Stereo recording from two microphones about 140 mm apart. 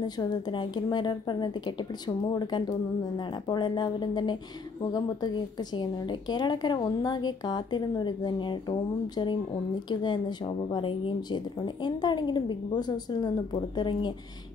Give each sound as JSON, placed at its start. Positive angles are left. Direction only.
{"t": 0.0, "sound": "a woman's voice", "side_deg": 30}